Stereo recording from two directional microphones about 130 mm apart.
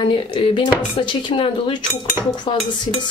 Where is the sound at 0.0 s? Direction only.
40° left (ahead or behind).